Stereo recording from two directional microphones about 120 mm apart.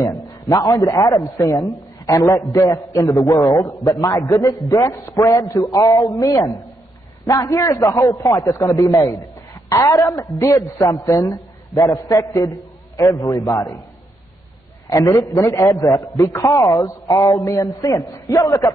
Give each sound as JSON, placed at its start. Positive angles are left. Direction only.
{"t": 0.0, "sound": "a man's voice", "side_deg": 30}
{"t": 14.9, "sound": "a man's voice", "side_deg": 30}